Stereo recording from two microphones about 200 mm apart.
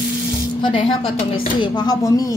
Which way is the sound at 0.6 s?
25° left (ahead or behind).